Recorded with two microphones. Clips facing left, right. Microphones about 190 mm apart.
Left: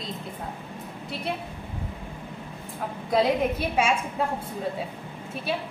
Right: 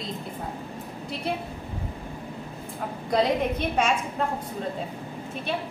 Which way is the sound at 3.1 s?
5° left (ahead or behind).